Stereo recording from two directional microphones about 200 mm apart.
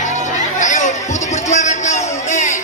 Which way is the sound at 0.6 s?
35° left (ahead or behind).